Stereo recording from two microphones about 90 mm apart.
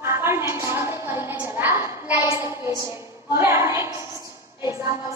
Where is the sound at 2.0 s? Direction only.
25° right (ahead or behind).